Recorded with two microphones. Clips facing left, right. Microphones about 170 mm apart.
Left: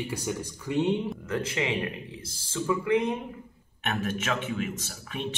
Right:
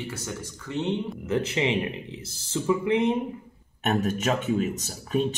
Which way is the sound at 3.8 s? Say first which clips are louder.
Right 5 dB; 40° right (ahead or behind).